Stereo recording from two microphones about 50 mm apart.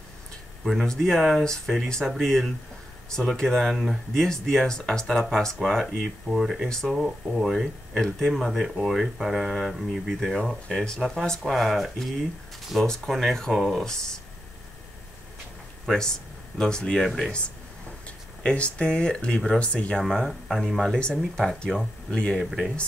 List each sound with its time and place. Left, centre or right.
0.8 s speech: centre
10.2 s speech: centre
16.5 s speech: centre
18.4 s speech: left
20.0 s speech: centre
20.2 s speech: centre
21.6 s speech: centre
22.4 s speech: centre